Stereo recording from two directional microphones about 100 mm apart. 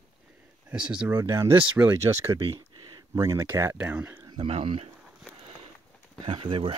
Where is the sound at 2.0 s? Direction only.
30° right (ahead or behind).